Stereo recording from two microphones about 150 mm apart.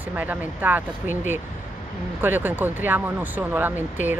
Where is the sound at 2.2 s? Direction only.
10° right (ahead or behind).